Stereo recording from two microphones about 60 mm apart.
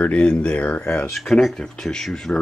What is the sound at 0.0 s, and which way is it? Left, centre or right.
Speech, centre.